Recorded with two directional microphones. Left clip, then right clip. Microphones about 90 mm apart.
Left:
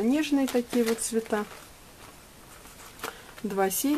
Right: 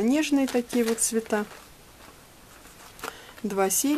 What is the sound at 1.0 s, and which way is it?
Speech, 35° right (ahead or behind).